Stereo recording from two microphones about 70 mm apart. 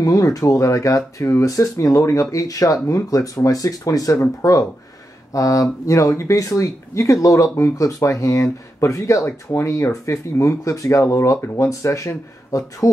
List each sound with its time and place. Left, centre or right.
0.0 s speech: left